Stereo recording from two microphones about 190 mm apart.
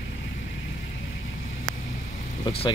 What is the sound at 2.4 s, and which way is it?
Speech, 30° left (ahead or behind).